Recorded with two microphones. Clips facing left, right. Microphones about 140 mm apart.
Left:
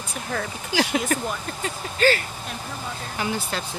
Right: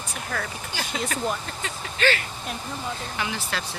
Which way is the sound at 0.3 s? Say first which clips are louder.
Left 3 dB; 30° left (ahead or behind).